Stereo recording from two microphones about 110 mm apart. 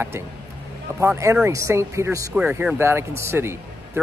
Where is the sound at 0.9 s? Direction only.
25° right (ahead or behind).